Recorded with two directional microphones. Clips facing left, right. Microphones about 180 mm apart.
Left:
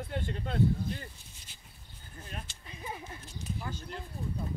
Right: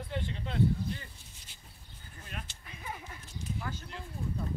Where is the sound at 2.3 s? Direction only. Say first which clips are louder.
Even; 30° left (ahead or behind).